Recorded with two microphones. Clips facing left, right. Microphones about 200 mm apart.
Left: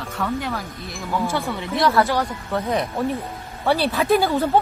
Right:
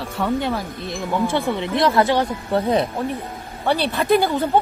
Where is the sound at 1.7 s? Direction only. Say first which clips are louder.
Right 1 dB; 20° right (ahead or behind).